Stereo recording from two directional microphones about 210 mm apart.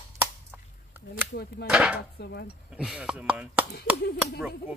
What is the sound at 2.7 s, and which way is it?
Speech, 5° right (ahead or behind).